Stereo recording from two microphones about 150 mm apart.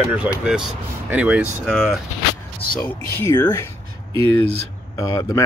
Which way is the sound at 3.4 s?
25° left (ahead or behind).